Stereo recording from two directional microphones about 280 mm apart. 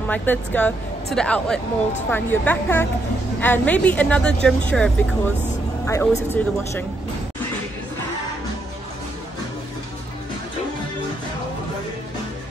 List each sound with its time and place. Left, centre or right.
0.1 s a woman's voice: centre